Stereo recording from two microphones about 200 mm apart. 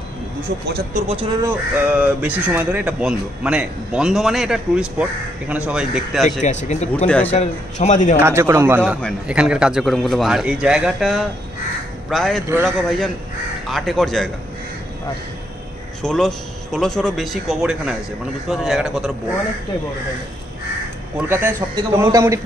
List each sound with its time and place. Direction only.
0.7 s speech: 50° right (ahead or behind)
1.4 s speech: 10° right (ahead or behind)
6.4 s a man's voice: 35° left (ahead or behind)
7.1 s a man's voice: 10° left (ahead or behind)
7.3 s a man's voice: 35° left (ahead or behind)
8.2 s a man's voice: 15° right (ahead or behind); by 14.3 s centre (ahead or behind)
16.0 s speech: 5° left (ahead or behind)
21.3 s a man's voice: 10° right (ahead or behind)